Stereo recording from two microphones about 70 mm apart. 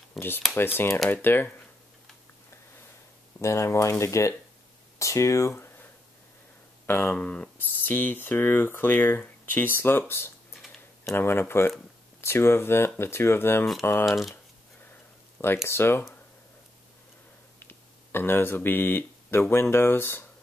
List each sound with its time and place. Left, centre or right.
0.2 s speech: centre
0.6 s speech: left
3.3 s speech: left
6.9 s speech: left
7.5 s speech: left
15.4 s speech: left
17.6 s speech: left